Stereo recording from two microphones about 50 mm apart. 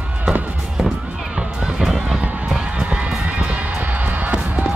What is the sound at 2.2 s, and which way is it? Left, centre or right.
Honk, right.